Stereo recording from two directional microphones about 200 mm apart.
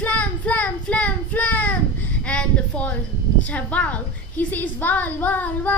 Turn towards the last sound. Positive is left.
turn(degrees=10)  # may be behind; listen again after turning